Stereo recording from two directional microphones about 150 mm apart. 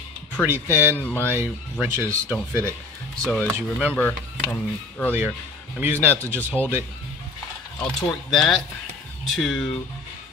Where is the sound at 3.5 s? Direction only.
10° right (ahead or behind).